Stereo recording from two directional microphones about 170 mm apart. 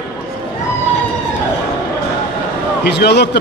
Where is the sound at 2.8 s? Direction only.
70° left (ahead or behind).